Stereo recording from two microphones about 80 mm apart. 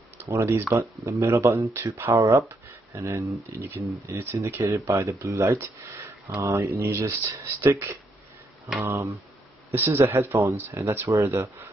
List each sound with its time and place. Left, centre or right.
0.3 s speech: right
4.1 s speech: right
4.4 s speech: right
7.1 s speech: right